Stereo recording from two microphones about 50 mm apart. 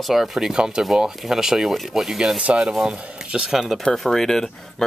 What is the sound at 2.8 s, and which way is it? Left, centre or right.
Speech, right.